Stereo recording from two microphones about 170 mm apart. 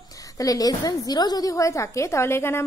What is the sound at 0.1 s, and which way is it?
A woman's voice, 20° left (ahead or behind).